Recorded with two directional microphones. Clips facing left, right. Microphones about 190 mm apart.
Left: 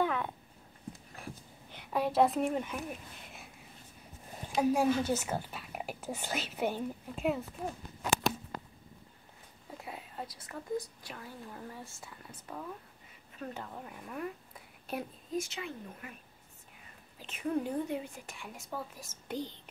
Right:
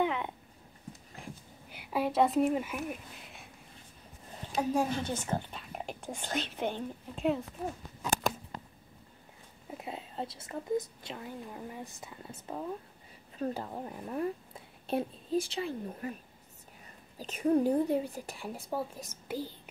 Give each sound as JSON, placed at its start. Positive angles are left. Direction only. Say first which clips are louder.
{"t": 0.0, "sound": "a sound", "louder": "right 1 dB", "side_deg": -20}
{"t": 4.4, "sound": "speech", "louder": "left 1 dB", "side_deg": 10}
{"t": 9.7, "sound": "a woman's voice", "louder": "right 4 dB", "side_deg": -20}
{"t": 17.2, "sound": "speech", "louder": "right 7 dB", "side_deg": -40}
{"t": 19.2, "sound": "a child's voice", "louder": "right 1 dB", "side_deg": -5}